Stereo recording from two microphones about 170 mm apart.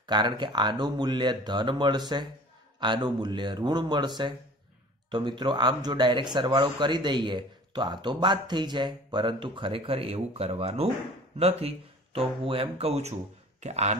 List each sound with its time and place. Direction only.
0.0 s speech: 25° right (ahead or behind)